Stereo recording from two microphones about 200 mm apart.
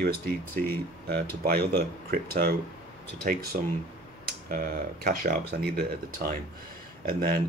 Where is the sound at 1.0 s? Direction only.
50° right (ahead or behind).